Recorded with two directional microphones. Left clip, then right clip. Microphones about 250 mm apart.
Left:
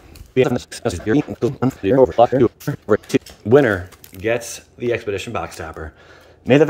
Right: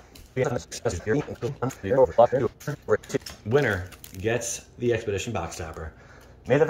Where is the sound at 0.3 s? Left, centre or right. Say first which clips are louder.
Left 9 dB; left.